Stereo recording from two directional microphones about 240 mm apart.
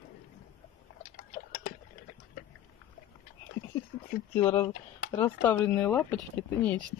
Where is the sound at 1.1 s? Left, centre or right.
Left.